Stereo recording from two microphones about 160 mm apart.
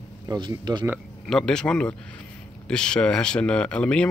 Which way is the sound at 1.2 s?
5° left (ahead or behind).